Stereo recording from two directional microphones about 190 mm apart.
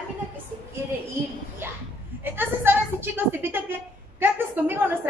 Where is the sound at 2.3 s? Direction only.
10° right (ahead or behind).